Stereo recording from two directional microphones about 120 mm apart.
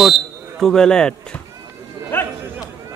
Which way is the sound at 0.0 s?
Centre (ahead or behind).